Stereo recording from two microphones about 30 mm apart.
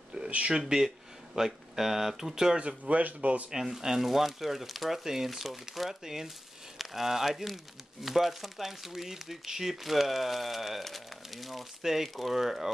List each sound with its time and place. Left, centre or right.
0.1 s a sound: right
0.6 s speech: centre
2.6 s speech: right
3.6 s speech: centre